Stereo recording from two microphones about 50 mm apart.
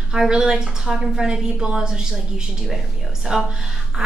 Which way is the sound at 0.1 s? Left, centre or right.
Centre.